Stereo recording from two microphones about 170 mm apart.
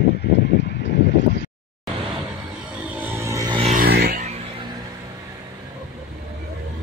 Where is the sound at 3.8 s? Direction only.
65° right (ahead or behind).